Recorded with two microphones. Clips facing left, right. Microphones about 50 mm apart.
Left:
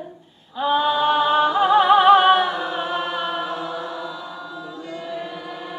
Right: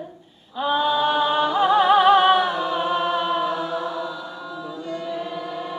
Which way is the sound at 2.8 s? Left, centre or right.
Centre.